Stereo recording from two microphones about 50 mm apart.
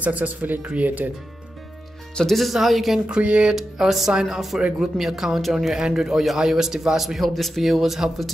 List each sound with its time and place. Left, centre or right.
0.0 s speech: right
2.1 s a man's voice: centre
3.1 s speech: right
3.5 s speech: centre
4.6 s speech: right
4.9 s a man's voice: centre